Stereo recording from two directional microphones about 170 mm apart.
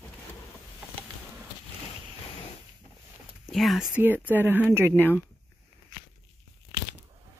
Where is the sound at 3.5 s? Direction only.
Centre (ahead or behind).